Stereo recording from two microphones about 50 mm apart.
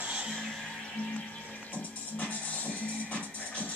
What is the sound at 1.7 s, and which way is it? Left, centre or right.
Music, left.